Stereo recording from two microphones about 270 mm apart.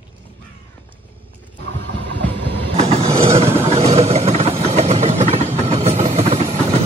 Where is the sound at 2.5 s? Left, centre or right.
Right.